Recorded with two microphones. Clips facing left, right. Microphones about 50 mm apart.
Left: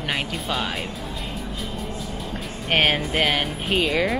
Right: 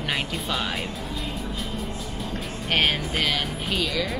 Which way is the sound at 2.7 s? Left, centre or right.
Centre.